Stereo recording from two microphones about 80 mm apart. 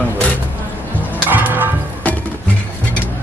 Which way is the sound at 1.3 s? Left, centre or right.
Right.